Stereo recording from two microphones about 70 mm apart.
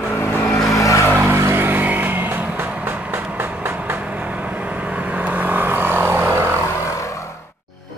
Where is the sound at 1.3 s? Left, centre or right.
Right.